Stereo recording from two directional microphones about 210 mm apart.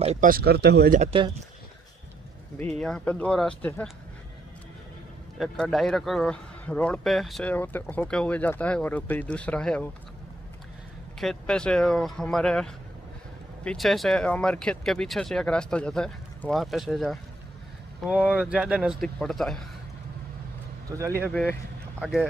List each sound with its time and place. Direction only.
0.0 s speech: 35° right (ahead or behind); by 0.9 s 50° right (ahead or behind)
0.9 s speech: 30° right (ahead or behind)
2.8 s speech: 5° left (ahead or behind)
5.4 s speech: centre (ahead or behind)
11.1 s speech: centre (ahead or behind)
21.1 s speech: 5° left (ahead or behind)